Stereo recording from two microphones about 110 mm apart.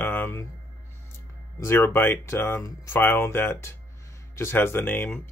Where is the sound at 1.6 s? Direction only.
25° left (ahead or behind).